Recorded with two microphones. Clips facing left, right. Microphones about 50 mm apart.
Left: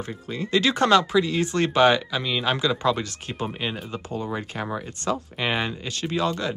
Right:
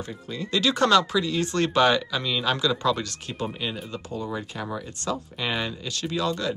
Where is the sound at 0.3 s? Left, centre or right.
Left.